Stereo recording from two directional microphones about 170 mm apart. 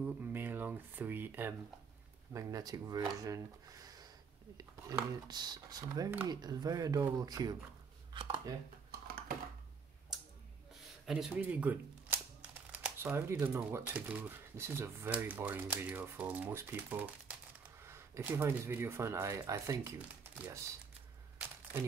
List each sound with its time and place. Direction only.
0.0 s speech: 10° right (ahead or behind); by 8.5 s 30° right (ahead or behind)
11.1 s speech: 5° right (ahead or behind)